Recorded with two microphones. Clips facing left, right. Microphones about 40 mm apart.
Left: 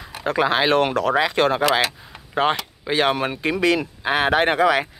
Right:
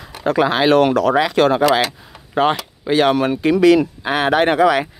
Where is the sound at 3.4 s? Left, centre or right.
Left.